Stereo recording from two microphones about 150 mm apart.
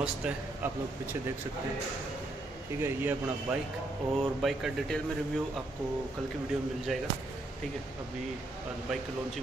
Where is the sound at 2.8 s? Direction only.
15° right (ahead or behind).